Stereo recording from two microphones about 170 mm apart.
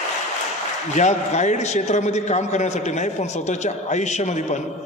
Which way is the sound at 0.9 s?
40° left (ahead or behind).